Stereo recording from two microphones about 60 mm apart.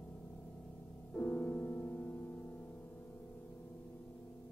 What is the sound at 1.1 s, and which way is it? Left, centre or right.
Music, left.